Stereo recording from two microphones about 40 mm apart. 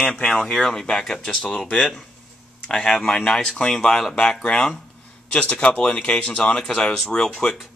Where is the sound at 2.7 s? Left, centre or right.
Centre.